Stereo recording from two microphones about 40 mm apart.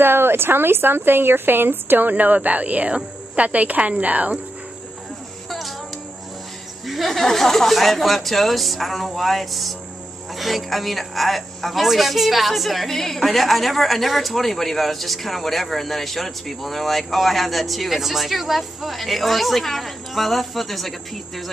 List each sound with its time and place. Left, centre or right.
0.0 s a woman's voice: right
5.5 s music: centre
6.9 s a man's voice: centre